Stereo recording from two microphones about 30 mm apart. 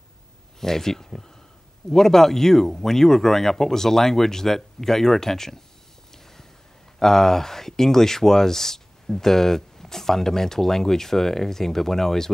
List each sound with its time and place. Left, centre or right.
0.6 s speech: centre
7.0 s speech: centre